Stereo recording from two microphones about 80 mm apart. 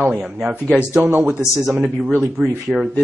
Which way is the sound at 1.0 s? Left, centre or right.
Right.